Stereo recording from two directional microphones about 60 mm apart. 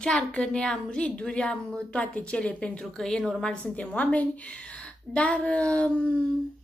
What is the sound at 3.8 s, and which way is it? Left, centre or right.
Speech, left.